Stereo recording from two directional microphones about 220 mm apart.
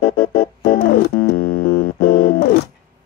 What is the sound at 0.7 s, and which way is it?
Music, 40° left (ahead or behind).